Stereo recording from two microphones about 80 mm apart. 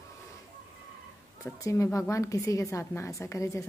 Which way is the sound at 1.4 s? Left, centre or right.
Left.